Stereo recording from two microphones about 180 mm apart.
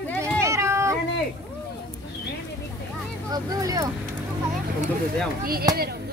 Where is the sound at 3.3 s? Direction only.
20° right (ahead or behind).